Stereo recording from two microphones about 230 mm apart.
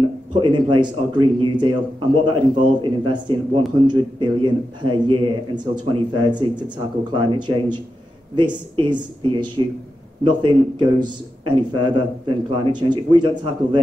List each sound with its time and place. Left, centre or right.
0.3 s a man's voice: centre